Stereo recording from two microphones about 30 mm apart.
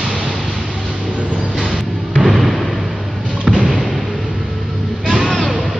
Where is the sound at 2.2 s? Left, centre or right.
Centre.